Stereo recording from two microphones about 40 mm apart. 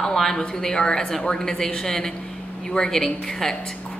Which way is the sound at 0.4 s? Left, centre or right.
Centre.